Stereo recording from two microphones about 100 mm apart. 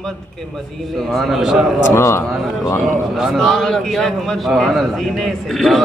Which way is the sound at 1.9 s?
25° left (ahead or behind).